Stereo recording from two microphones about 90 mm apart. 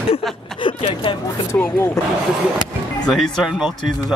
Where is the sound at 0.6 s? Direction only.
75° left (ahead or behind).